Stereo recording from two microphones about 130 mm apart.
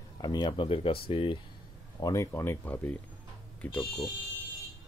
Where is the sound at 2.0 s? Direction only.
25° left (ahead or behind).